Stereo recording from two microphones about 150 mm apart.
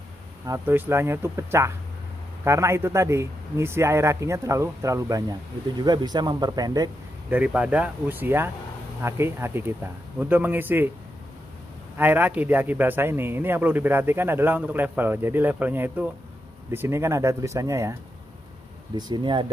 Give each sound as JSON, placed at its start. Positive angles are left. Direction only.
{"t": 0.5, "sound": "speech", "side_deg": -15}
{"t": 7.2, "sound": "speech", "side_deg": -10}
{"t": 12.0, "sound": "speech", "side_deg": -10}
{"t": 18.9, "sound": "speech", "side_deg": -30}